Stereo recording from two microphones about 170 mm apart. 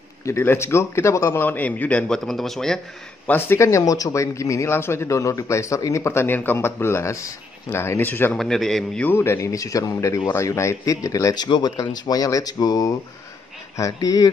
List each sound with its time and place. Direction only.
0.2 s speech: 15° left (ahead or behind)
3.3 s speech: 15° left (ahead or behind)